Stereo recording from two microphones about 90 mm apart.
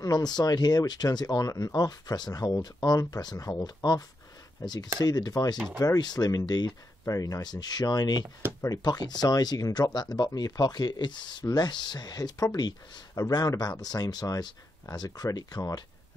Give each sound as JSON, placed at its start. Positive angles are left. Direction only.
{"t": 0.0, "sound": "speech", "side_deg": 45}
{"t": 5.0, "sound": "speech", "side_deg": 45}
{"t": 7.1, "sound": "speech", "side_deg": 40}